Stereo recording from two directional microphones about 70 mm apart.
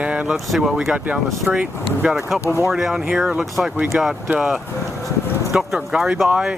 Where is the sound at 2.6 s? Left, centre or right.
Centre.